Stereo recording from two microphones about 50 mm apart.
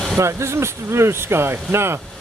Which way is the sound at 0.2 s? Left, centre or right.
Right.